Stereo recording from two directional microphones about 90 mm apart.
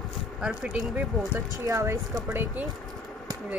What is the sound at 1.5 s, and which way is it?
Speech, 40° right (ahead or behind).